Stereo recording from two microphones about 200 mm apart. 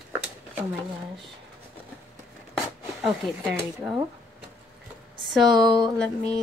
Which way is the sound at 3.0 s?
Centre (ahead or behind).